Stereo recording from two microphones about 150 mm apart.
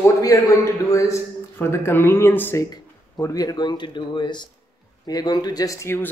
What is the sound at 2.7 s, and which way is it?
Speech, 25° left (ahead or behind).